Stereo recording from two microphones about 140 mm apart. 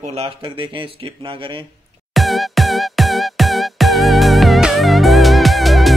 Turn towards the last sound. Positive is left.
turn(degrees=0)  # may be behind; listen again after turning